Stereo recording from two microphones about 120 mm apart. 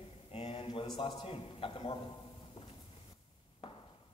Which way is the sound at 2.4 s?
50° left (ahead or behind).